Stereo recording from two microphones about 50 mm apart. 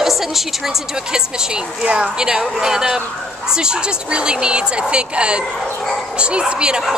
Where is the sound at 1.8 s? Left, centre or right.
Right.